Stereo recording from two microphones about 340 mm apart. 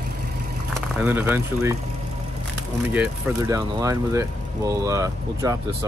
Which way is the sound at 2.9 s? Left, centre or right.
Centre.